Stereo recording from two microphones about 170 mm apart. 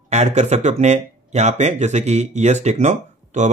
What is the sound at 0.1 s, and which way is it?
Speech, 40° right (ahead or behind).